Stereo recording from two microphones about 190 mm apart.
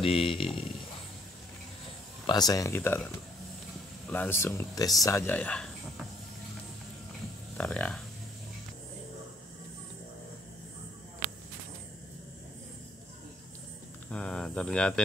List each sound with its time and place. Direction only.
0.0 s speech: 30° left (ahead or behind)
2.2 s speech: 20° left (ahead or behind)
4.1 s speech: 10° left (ahead or behind)
7.5 s speech: 5° left (ahead or behind)
14.1 s speech: 5° left (ahead or behind)